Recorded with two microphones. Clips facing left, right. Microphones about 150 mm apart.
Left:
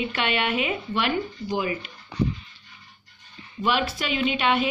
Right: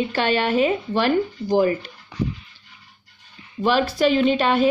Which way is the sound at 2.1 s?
30° left (ahead or behind).